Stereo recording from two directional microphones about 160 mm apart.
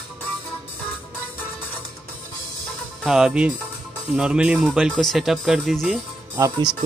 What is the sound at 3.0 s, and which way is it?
Speech, 5° right (ahead or behind).